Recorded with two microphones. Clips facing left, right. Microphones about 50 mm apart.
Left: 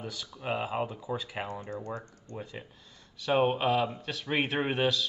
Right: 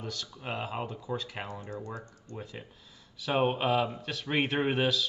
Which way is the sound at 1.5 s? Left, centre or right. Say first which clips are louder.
Left 2 dB; left.